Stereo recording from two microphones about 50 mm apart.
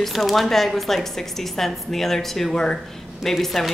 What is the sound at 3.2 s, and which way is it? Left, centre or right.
Speech, centre.